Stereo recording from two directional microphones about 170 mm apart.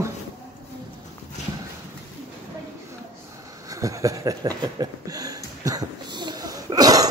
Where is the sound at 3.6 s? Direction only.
20° right (ahead or behind).